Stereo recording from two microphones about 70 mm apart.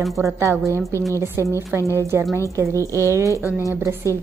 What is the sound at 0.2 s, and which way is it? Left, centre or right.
A woman's voice, right.